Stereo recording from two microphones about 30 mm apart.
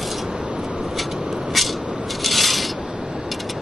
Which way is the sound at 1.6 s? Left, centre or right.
Centre.